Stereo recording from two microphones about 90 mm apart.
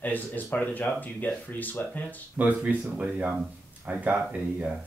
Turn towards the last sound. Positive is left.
turn(degrees=-15)  # may be behind; listen again after turning